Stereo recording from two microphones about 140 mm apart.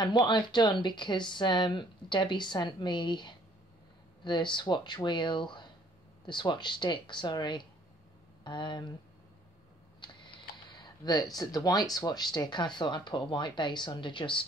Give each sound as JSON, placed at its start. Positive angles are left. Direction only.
{"t": 0.0, "sound": "speech", "side_deg": 30}
{"t": 9.9, "sound": "a sound", "side_deg": 35}
{"t": 11.3, "sound": "speech", "side_deg": 25}